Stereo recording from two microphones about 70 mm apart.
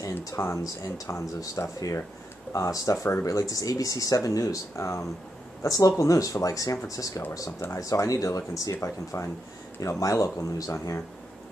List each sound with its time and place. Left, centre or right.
0.4 s speech: left
5.6 s speech: left